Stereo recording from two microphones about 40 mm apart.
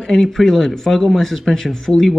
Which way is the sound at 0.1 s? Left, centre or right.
Centre.